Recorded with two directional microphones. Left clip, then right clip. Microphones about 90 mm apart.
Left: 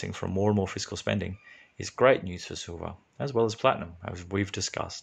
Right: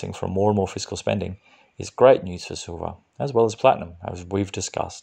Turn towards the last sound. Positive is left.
turn(degrees=-35)  # may be behind; listen again after turning